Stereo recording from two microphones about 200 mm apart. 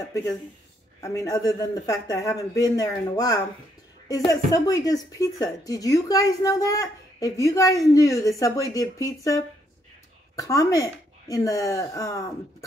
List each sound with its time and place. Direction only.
1.0 s speech: 15° left (ahead or behind)